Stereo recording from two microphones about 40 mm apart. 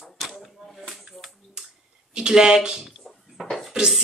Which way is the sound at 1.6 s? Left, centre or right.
Right.